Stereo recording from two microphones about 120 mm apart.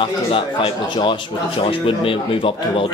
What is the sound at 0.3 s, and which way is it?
Speech, 45° left (ahead or behind).